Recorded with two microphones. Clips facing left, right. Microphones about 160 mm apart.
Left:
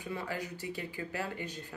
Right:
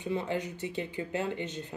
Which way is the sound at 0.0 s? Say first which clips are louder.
Right 6 dB; 20° right (ahead or behind).